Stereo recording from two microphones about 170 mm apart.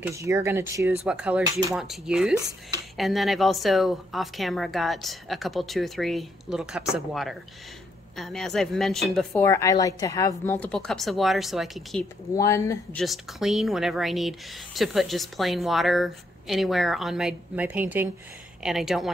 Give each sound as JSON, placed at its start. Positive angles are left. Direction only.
{"t": 0.0, "sound": "speech", "side_deg": -15}
{"t": 8.2, "sound": "speech", "side_deg": 0}
{"t": 12.4, "sound": "speech", "side_deg": 20}
{"t": 12.9, "sound": "speech", "side_deg": 0}